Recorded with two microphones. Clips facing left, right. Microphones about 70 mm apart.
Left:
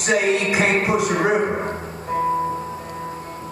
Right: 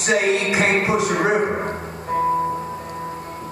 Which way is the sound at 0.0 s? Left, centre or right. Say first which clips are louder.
Even; right.